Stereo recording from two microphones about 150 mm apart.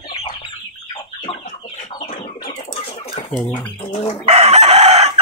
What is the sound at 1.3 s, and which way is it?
Chicken, 35° left (ahead or behind).